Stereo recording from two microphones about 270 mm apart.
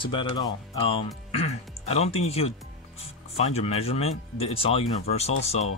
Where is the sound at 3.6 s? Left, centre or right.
Left.